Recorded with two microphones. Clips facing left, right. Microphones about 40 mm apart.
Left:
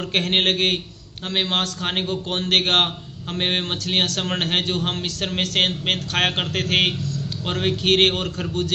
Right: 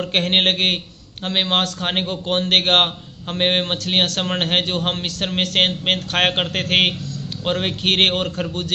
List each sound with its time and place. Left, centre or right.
0.1 s a man's voice: right